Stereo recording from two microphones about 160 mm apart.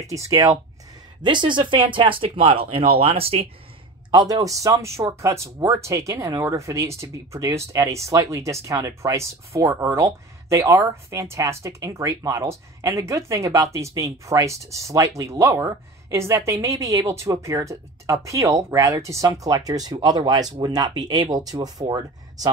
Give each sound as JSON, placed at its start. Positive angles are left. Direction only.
{"t": 0.0, "sound": "speech", "side_deg": -20}
{"t": 4.1, "sound": "speech", "side_deg": -25}